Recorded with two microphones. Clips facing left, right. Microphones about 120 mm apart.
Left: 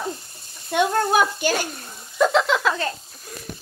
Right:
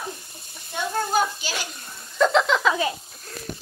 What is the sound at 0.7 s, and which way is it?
Speech, 65° left (ahead or behind).